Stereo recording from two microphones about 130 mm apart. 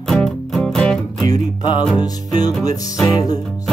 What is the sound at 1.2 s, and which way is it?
Music, 30° left (ahead or behind).